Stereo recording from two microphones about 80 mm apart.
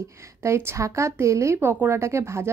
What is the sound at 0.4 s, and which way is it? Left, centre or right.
A woman's voice, right.